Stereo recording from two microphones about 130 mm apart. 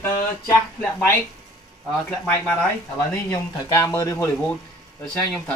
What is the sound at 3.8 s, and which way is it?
Speech, 25° left (ahead or behind).